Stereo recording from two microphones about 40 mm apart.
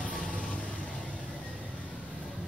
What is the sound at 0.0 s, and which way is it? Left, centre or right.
Vehicle, left.